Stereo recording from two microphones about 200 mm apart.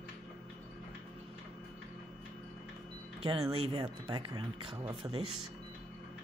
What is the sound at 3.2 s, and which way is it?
Speech, 30° right (ahead or behind).